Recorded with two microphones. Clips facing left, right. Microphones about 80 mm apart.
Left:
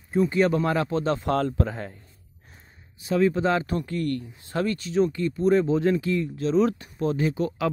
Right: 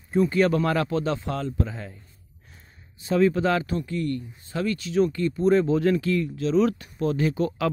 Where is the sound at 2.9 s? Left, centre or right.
Centre.